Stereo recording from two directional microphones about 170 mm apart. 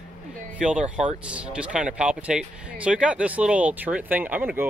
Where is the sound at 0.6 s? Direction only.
5° right (ahead or behind).